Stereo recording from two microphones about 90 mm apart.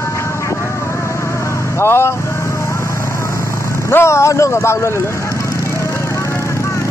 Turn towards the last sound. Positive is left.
turn(degrees=30)  # may be behind; listen again after turning